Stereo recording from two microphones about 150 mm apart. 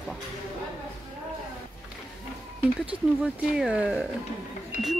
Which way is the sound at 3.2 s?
10° right (ahead or behind).